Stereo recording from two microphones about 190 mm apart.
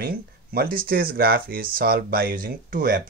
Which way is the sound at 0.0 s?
50° right (ahead or behind).